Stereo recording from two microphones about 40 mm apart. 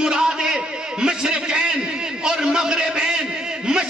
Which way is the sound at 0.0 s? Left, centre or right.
Centre.